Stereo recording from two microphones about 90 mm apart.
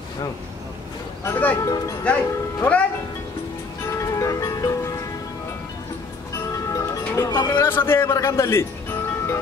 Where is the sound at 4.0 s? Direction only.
35° left (ahead or behind).